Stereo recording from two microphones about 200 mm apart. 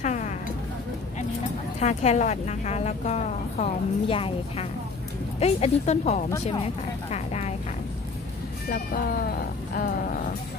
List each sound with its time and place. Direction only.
0.0 s a sound: 35° left (ahead or behind)
1.8 s a woman's voice: 35° left (ahead or behind)
7.1 s vehicle: 35° left (ahead or behind)
8.6 s speech: 45° left (ahead or behind)